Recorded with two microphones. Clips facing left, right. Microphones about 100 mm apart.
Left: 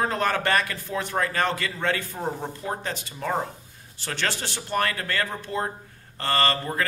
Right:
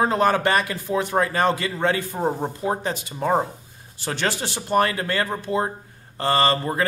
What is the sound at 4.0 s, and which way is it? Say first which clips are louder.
A man's voice: right 4 dB; 15° right (ahead or behind).